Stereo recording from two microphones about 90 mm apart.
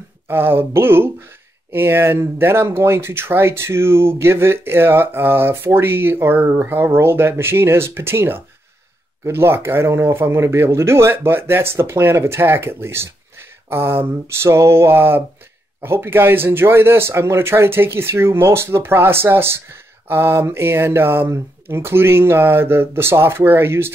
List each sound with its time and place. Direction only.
0.3 s speech: 25° right (ahead or behind)